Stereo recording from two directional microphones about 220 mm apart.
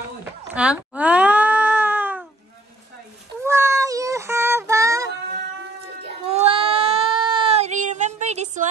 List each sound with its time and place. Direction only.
0.2 s cat: 5° right (ahead or behind)
3.4 s child singing: 10° right (ahead or behind)
6.0 s a sound: 25° right (ahead or behind)